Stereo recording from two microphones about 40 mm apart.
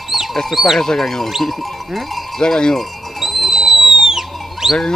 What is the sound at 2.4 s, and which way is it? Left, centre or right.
Speech, centre.